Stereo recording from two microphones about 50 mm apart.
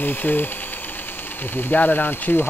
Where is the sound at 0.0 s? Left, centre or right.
Left.